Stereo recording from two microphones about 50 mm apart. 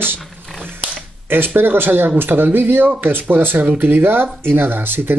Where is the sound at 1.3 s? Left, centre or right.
Right.